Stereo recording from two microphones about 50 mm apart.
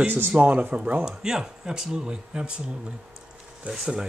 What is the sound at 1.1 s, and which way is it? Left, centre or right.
Speech, centre.